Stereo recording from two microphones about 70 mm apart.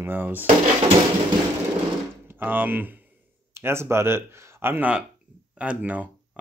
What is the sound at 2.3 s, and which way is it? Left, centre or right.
Speech, right.